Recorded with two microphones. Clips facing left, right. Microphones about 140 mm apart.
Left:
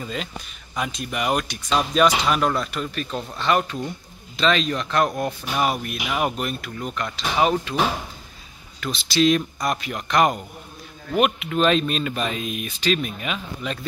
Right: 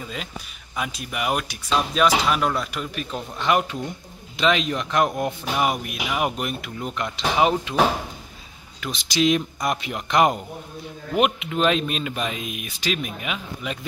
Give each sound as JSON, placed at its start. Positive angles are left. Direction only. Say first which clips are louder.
{"t": 0.0, "sound": "speech", "louder": "left 3 dB", "side_deg": -5}
{"t": 8.8, "sound": "speech", "louder": "left 2 dB", "side_deg": -15}